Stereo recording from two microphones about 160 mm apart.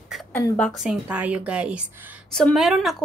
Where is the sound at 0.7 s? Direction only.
Centre (ahead or behind).